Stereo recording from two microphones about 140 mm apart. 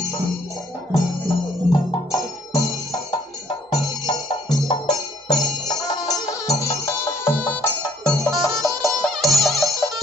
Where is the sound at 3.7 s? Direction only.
35° left (ahead or behind).